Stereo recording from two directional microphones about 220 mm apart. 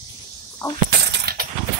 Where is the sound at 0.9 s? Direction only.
50° right (ahead or behind).